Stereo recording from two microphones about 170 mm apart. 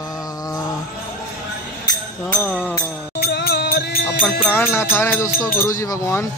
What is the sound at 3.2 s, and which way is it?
Music, 65° left (ahead or behind).